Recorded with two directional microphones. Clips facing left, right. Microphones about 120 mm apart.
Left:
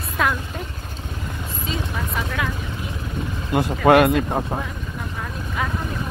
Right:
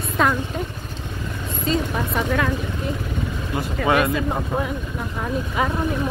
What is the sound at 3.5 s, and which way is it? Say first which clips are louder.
Speech: left 6 dB; 60° left (ahead or behind).